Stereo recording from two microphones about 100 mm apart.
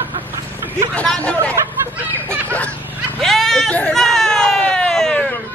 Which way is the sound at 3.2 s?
Centre (ahead or behind).